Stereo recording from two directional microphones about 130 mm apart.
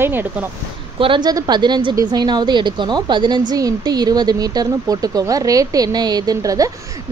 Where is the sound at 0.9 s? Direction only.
40° right (ahead or behind).